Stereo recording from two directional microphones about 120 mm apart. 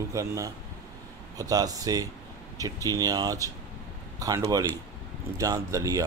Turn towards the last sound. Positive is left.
turn(degrees=-30)  # may be behind; listen again after turning